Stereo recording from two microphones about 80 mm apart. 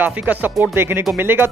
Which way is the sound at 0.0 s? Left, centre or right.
Right.